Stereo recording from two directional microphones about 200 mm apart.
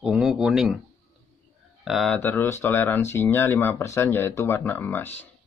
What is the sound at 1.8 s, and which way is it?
Speech, centre (ahead or behind).